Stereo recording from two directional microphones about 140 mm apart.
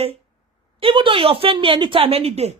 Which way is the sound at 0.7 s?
40° right (ahead or behind).